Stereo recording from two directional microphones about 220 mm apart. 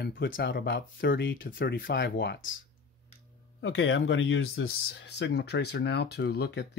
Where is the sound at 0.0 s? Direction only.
50° left (ahead or behind).